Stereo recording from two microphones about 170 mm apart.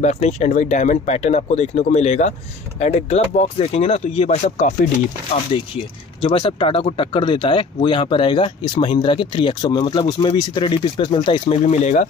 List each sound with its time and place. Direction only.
0.0 s speech: 40° left (ahead or behind)
6.2 s speech: 30° left (ahead or behind)